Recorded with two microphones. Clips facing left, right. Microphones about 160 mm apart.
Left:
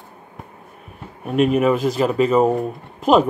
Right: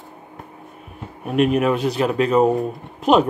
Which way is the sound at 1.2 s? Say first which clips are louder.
Left 1 dB; centre (ahead or behind).